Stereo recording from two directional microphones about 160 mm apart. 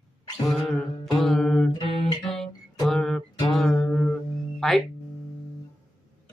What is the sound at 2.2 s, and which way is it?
Guitar, centre (ahead or behind).